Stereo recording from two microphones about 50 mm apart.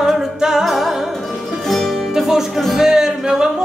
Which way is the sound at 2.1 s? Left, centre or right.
Centre.